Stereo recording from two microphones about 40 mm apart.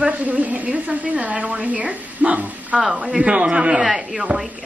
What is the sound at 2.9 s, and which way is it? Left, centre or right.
Speech, centre.